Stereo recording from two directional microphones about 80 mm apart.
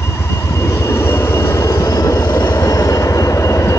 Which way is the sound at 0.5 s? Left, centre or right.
Left.